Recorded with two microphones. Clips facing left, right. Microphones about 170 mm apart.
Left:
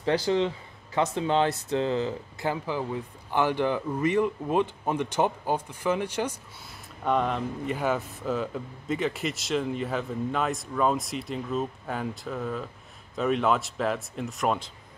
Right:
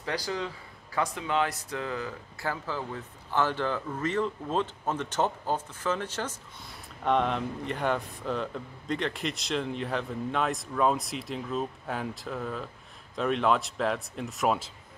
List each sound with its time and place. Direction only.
0.0 s speech: 25° left (ahead or behind)
7.1 s a man's voice: centre (ahead or behind)